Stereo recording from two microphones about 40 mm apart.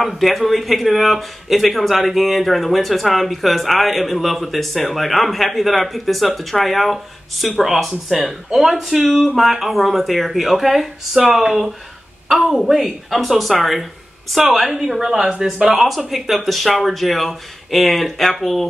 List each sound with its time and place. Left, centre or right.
0.0 s a woman's voice: centre
12.3 s a woman's voice: centre